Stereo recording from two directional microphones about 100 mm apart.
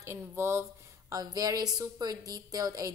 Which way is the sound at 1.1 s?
35° right (ahead or behind).